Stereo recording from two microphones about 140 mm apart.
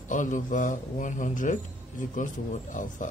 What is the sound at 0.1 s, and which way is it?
A man's voice, 65° left (ahead or behind).